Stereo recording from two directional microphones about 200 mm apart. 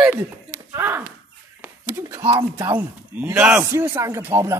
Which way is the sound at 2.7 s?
10° right (ahead or behind).